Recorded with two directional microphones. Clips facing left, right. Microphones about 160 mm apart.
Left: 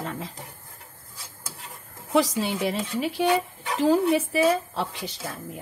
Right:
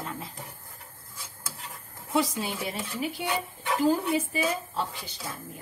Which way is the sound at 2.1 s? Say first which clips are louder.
Left 5 dB; 85° left.